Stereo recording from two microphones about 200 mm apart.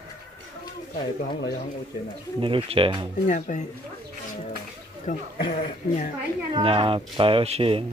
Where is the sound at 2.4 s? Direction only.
25° right (ahead or behind).